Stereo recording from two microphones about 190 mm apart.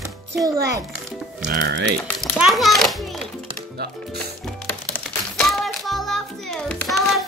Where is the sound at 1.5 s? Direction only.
50° right (ahead or behind).